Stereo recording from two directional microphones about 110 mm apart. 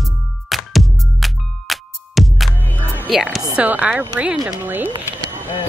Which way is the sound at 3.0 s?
Centre (ahead or behind).